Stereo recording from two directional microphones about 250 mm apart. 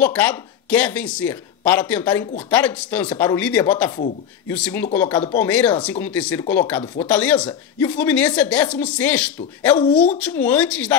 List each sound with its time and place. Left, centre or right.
0.0 s a woman's voice: centre